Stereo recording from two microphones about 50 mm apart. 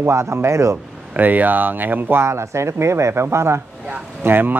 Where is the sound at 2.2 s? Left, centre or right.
Right.